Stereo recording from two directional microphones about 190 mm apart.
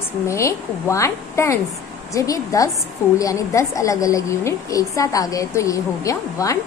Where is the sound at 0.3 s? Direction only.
15° left (ahead or behind).